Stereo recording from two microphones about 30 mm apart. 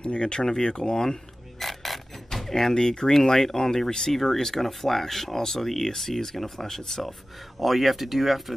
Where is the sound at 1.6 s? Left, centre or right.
Centre.